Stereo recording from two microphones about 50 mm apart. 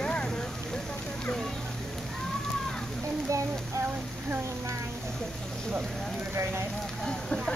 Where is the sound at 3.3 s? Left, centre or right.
Right.